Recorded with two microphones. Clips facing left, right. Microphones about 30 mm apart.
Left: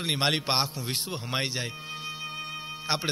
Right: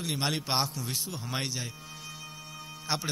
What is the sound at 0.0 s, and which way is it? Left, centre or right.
Speech, left.